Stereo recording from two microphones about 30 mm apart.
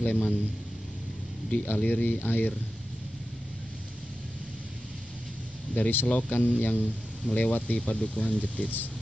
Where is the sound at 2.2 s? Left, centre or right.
Left.